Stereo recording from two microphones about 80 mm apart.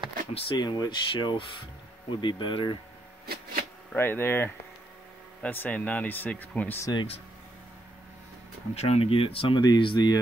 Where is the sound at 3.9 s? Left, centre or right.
Left.